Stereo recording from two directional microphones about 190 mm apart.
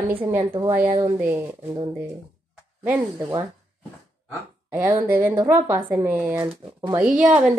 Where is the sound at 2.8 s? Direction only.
15° right (ahead or behind).